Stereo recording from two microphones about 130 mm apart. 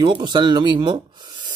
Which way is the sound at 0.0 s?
35° right (ahead or behind).